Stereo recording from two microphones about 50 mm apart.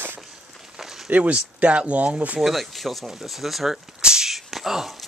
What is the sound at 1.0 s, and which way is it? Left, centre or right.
Speech, right.